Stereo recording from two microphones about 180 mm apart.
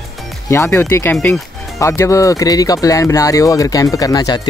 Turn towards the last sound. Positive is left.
turn(degrees=20)  # may be behind; listen again after turning